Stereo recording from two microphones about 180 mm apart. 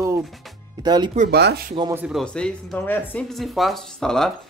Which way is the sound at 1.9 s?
5° right (ahead or behind).